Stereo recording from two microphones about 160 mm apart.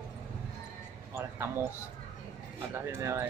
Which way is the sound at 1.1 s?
15° right (ahead or behind).